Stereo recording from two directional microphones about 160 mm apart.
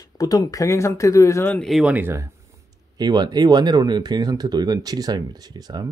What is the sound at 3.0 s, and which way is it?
Speech, 25° right (ahead or behind).